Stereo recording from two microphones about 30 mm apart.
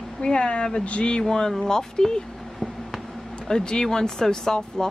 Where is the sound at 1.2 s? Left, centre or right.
Centre.